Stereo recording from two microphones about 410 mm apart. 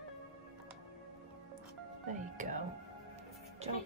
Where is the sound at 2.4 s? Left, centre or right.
Centre.